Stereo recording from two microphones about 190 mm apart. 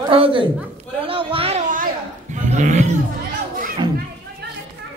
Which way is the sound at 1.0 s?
30° right (ahead or behind).